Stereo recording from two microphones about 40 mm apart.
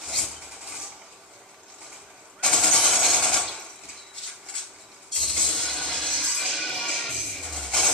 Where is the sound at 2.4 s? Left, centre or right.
Centre.